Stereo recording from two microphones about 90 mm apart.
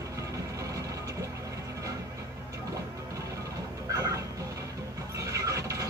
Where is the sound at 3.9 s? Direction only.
40° right (ahead or behind).